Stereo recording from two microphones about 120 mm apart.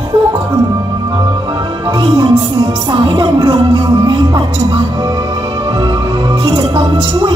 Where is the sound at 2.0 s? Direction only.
35° right (ahead or behind).